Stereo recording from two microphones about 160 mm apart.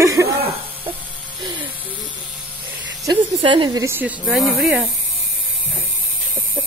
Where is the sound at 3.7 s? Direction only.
15° right (ahead or behind).